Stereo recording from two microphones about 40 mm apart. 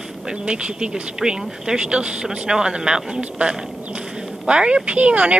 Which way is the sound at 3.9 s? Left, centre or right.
Right.